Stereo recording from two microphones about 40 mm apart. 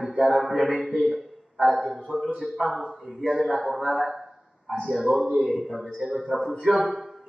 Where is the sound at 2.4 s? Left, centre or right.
Centre.